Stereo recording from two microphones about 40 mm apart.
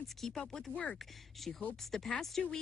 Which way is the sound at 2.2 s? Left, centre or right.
Centre.